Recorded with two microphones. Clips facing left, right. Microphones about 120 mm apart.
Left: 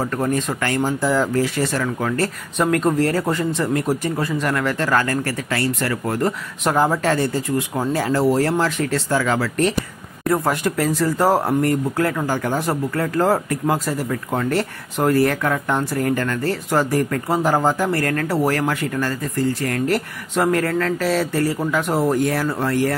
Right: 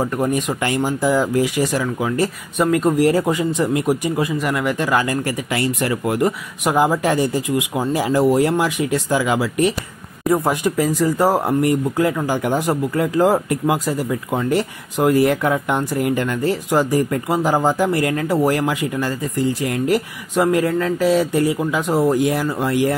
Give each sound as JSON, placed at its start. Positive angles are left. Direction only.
{"t": 0.0, "sound": "speech", "side_deg": -15}
{"t": 3.0, "sound": "speech", "side_deg": -15}
{"t": 22.1, "sound": "speech", "side_deg": -15}